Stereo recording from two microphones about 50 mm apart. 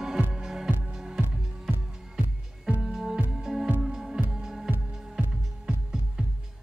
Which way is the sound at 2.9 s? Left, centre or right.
Centre.